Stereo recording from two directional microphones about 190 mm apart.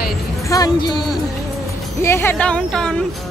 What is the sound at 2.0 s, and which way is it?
Speech, 10° left (ahead or behind).